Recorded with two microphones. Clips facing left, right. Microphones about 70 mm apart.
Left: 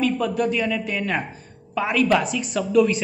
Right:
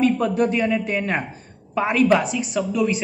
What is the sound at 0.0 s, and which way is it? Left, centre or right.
A man's voice, right.